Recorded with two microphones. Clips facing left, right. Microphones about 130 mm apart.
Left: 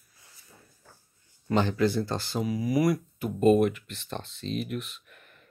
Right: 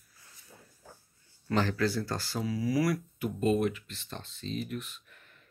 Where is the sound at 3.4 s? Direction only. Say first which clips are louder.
Left 7 dB; 55° left (ahead or behind); by 5.2 s 80° left.